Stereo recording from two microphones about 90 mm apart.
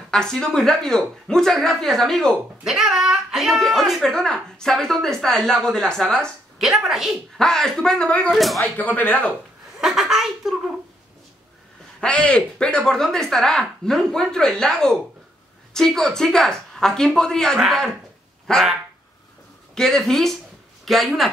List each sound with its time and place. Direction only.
0.1 s speech: 5° left (ahead or behind)
2.6 s speech: 5° right (ahead or behind)
6.6 s speech: 5° right (ahead or behind); by 9.3 s 15° left (ahead or behind)
9.8 s chuckle: 5° right (ahead or behind)
12.0 s speech: 10° left (ahead or behind)